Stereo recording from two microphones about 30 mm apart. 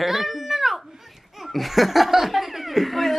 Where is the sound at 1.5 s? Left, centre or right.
Centre.